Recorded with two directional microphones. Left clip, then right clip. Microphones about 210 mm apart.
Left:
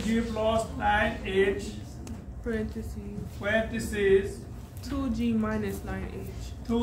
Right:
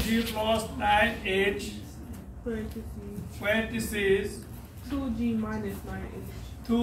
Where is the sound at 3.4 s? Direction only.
5° left (ahead or behind).